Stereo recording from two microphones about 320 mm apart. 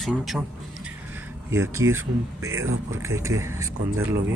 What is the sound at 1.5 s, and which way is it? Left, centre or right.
Speech, centre.